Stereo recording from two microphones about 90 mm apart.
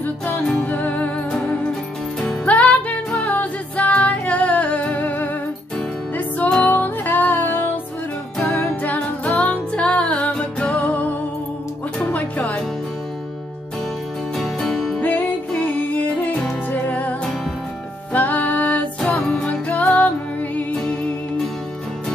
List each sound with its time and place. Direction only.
0.0 s music: 10° left (ahead or behind)
8.4 s music: 10° left (ahead or behind)
14.4 s music: 5° left (ahead or behind)
15.0 s music: 20° left (ahead or behind)